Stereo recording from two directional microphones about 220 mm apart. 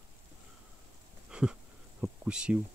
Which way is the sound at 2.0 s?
5° right (ahead or behind).